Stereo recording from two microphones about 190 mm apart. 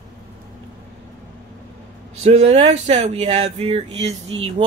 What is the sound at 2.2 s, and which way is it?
Speech, 35° right (ahead or behind).